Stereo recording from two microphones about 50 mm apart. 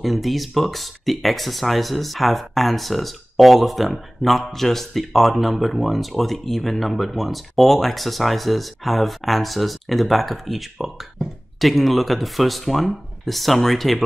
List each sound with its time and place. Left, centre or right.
0.0 s speech: centre